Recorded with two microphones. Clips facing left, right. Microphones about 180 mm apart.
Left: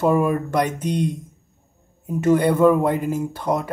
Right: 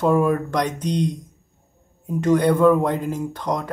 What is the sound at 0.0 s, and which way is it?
Speech, 5° left (ahead or behind).